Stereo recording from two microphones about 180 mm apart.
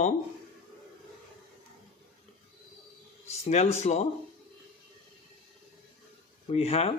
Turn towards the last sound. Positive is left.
turn(degrees=35)  # may be behind; listen again after turning